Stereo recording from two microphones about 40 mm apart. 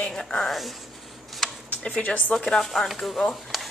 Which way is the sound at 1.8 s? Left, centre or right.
Left.